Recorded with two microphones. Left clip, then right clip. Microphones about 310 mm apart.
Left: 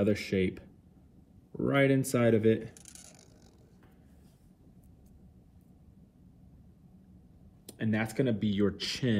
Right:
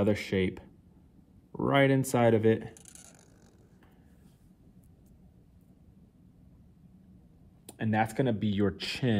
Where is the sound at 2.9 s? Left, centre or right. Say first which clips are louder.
Left 1 dB; centre.